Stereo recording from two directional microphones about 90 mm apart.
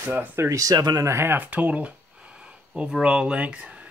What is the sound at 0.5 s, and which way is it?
Speech, 40° right (ahead or behind).